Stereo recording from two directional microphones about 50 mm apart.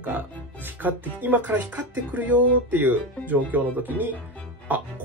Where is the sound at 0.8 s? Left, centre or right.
Right.